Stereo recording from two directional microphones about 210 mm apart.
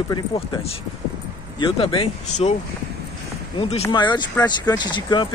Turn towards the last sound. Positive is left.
turn(degrees=20)  # may be behind; listen again after turning